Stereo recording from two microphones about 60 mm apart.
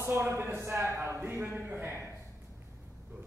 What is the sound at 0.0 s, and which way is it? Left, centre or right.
A man's voice, right.